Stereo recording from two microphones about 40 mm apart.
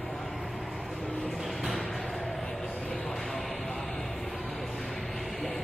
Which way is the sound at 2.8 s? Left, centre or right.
Centre.